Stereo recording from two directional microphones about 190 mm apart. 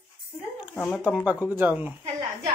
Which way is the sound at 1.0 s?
5° right (ahead or behind).